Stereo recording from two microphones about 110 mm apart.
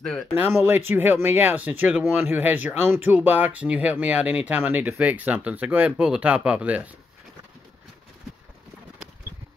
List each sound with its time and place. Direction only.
0.4 s speech: 20° right (ahead or behind)